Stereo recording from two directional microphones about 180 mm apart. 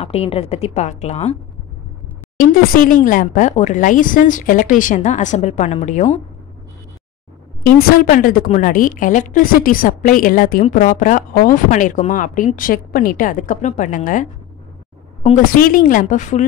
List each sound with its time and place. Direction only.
0.0 s a woman's voice: 35° left (ahead or behind)
2.3 s a woman's voice: 50° left (ahead or behind)
7.6 s a woman's voice: 50° left (ahead or behind)
15.5 s a woman's voice: 50° left (ahead or behind)